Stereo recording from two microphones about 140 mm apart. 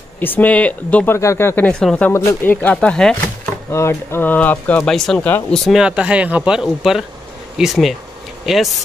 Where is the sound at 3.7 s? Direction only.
20° left (ahead or behind).